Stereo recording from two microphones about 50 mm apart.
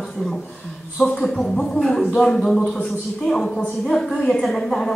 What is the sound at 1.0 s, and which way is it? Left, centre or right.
A woman's voice, centre.